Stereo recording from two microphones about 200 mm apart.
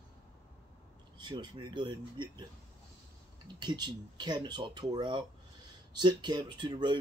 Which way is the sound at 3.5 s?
20° right (ahead or behind).